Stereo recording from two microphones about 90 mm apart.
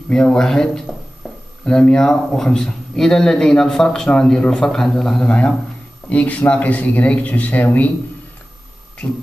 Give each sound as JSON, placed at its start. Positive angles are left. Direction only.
{"t": 0.1, "sound": "speech", "side_deg": 5}